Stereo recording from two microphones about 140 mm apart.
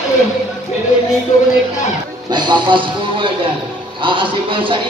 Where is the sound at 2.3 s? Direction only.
30° right (ahead or behind).